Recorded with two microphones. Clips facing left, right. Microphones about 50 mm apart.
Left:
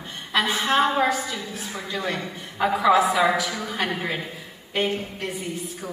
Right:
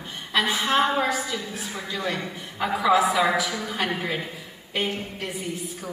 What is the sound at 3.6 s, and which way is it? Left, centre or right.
Speech, centre.